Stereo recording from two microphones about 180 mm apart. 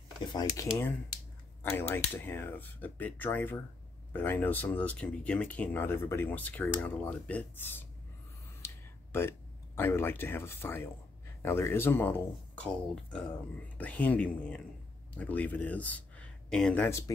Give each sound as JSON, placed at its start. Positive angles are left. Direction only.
{"t": 0.2, "sound": "speech", "side_deg": 20}
{"t": 8.6, "sound": "a sound", "side_deg": 15}
{"t": 9.8, "sound": "speech", "side_deg": 10}